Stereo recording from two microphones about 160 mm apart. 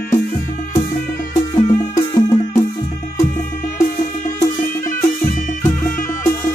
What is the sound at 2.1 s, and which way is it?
Music, 25° left (ahead or behind).